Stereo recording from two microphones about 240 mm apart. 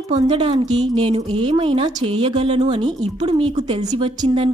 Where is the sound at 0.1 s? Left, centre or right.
Right.